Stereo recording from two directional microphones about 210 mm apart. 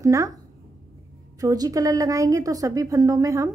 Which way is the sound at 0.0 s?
15° right (ahead or behind).